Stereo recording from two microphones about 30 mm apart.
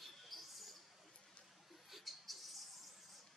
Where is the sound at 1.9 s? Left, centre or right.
Centre.